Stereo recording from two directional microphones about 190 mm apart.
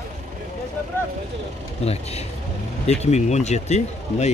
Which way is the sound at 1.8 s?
35° left (ahead or behind).